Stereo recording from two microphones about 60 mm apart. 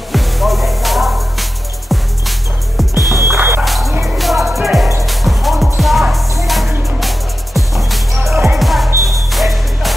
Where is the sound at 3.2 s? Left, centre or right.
Right.